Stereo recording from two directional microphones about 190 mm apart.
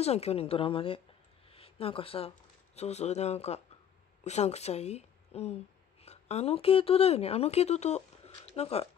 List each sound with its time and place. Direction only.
0.0 s speech: 35° left (ahead or behind)